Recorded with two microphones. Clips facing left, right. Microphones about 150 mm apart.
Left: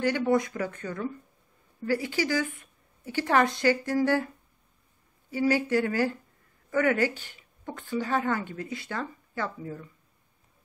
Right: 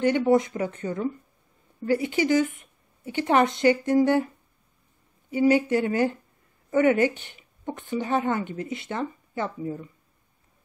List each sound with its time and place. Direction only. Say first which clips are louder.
0.0 s a woman's voice: right 4 dB; 20° right (ahead or behind)
5.3 s speech: right 4 dB; 20° right (ahead or behind)